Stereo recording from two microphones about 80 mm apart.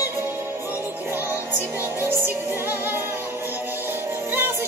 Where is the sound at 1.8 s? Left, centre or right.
Right.